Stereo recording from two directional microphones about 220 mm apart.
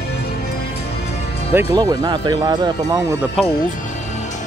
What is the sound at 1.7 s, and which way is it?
Speech, 15° right (ahead or behind).